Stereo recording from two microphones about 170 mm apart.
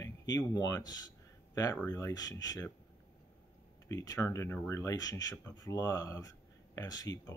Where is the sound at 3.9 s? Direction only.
20° left (ahead or behind).